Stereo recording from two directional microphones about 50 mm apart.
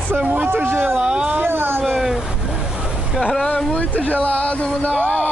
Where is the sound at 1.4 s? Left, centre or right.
Right.